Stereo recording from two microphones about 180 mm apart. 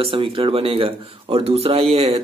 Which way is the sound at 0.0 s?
30° right (ahead or behind).